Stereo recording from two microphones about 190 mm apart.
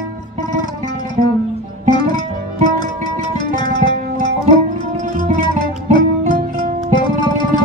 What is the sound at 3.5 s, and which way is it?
Music, 25° left (ahead or behind).